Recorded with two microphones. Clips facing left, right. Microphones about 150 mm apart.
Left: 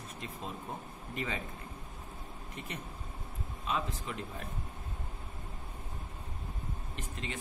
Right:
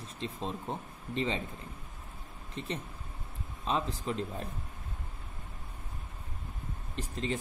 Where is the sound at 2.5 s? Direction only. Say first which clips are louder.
Right 6 dB; 30° right (ahead or behind).